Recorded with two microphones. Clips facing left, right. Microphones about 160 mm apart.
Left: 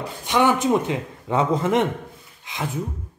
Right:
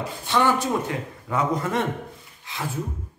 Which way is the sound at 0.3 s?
15° left (ahead or behind).